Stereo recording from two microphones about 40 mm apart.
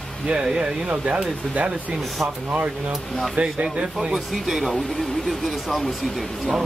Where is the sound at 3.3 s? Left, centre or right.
Right.